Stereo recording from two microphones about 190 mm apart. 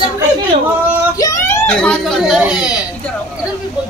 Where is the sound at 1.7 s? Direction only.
5° left (ahead or behind).